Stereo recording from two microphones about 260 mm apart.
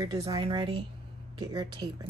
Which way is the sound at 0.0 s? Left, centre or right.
Centre.